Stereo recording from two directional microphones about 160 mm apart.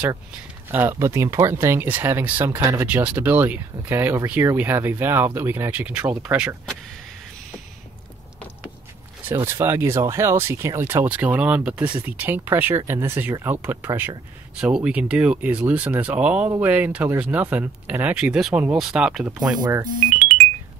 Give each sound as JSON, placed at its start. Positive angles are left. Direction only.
{"t": 0.7, "sound": "speech", "side_deg": -15}
{"t": 9.3, "sound": "speech", "side_deg": -15}
{"t": 19.6, "sound": "speech", "side_deg": -25}